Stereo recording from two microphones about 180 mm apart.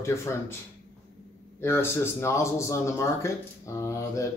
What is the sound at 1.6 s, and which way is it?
Speech, 15° left (ahead or behind).